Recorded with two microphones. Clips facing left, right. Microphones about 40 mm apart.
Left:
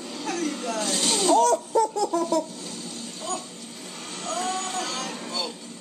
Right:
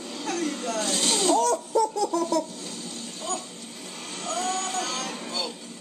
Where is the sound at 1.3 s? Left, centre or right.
Left.